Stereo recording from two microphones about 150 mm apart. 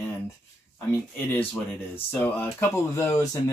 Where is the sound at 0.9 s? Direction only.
15° left (ahead or behind).